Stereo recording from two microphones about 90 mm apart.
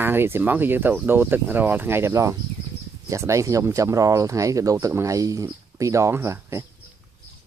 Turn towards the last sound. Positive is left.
turn(degrees=-30)  # may be behind; listen again after turning